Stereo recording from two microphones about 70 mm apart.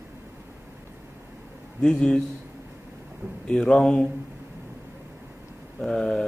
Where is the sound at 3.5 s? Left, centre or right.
Centre.